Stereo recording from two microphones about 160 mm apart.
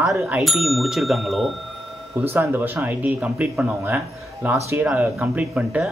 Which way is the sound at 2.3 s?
10° right (ahead or behind).